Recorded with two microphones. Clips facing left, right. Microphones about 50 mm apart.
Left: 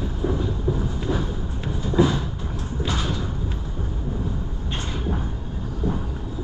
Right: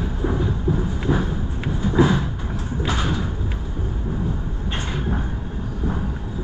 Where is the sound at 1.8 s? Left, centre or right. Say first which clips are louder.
Right 2 dB; right.